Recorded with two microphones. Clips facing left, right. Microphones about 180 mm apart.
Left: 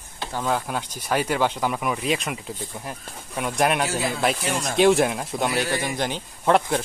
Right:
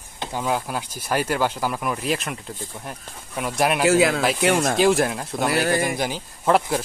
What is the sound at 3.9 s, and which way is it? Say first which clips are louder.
Speech: right 9 dB; 90° right.